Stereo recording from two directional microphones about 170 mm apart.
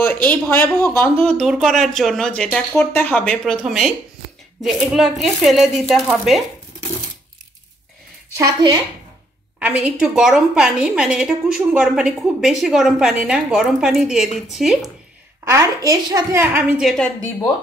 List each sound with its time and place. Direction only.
0.0 s a woman's voice: 10° left (ahead or behind)
8.4 s a woman's voice: 25° right (ahead or behind)
9.6 s a woman's voice: 5° right (ahead or behind)
15.5 s speech: 20° right (ahead or behind)
16.8 s a woman's voice: centre (ahead or behind)